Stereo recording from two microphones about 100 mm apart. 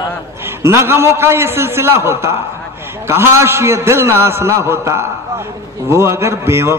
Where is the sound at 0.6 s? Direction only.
25° right (ahead or behind).